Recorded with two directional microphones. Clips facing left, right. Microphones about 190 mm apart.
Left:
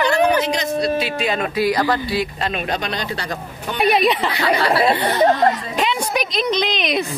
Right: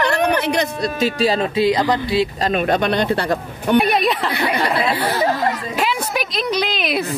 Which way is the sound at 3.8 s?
Centre (ahead or behind).